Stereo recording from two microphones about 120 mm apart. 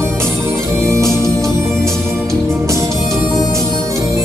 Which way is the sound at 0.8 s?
25° right (ahead or behind).